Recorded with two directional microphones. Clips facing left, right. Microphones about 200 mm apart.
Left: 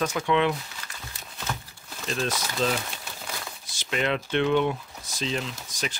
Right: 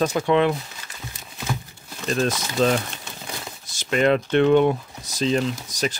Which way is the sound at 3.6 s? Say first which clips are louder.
Right 8 dB; 45° right (ahead or behind).